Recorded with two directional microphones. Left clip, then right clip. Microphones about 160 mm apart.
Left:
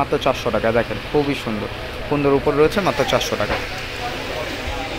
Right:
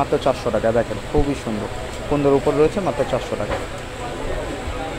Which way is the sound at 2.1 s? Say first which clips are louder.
Even; centre (ahead or behind).